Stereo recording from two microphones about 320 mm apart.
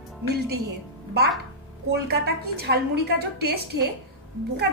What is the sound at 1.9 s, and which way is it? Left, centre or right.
A woman's voice, right.